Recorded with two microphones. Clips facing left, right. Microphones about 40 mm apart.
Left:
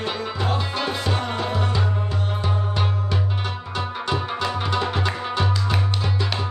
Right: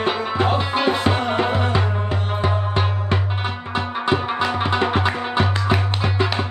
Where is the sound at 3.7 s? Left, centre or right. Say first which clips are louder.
Right 5 dB; right.